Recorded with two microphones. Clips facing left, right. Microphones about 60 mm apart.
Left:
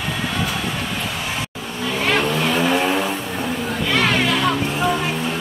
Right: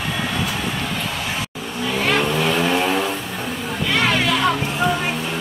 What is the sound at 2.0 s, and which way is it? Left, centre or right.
Vehicle, centre.